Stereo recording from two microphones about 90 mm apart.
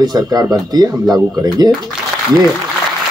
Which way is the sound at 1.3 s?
45° right (ahead or behind).